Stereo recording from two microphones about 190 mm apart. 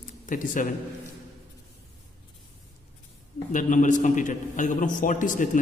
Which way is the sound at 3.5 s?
40° left (ahead or behind).